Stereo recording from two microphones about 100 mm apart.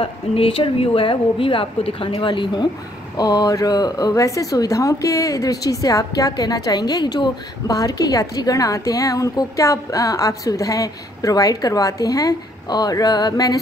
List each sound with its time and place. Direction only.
0.0 s a woman's voice: 65° left (ahead or behind); by 13.6 s 40° left (ahead or behind)